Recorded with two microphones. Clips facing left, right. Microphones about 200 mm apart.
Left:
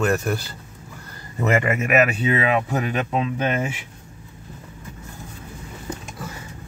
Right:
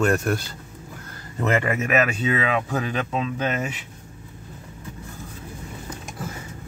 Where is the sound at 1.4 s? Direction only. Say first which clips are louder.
Left 2 dB; 15° left (ahead or behind).